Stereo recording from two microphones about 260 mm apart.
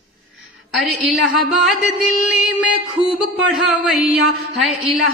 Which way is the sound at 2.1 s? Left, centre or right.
Left.